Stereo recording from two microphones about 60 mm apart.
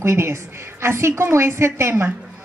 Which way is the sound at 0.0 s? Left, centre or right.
Right.